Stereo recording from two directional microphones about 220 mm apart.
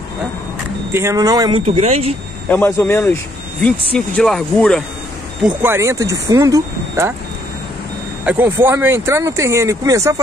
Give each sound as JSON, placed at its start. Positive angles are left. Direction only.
{"t": 0.9, "sound": "speech", "side_deg": -15}
{"t": 1.7, "sound": "speech", "side_deg": -30}
{"t": 2.5, "sound": "a man's voice", "side_deg": 10}
{"t": 5.6, "sound": "speech", "side_deg": -10}
{"t": 8.3, "sound": "speech", "side_deg": -10}